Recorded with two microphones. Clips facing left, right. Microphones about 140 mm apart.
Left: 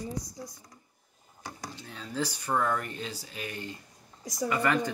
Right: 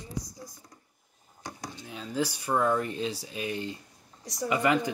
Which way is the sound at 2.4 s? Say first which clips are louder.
Right 3 dB; 20° right (ahead or behind).